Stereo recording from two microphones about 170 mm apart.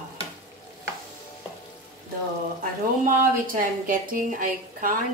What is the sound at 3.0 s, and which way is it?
A woman's voice, 55° right (ahead or behind).